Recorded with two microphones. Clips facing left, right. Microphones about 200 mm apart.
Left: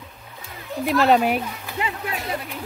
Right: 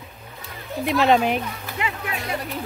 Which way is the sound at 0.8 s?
Centre (ahead or behind).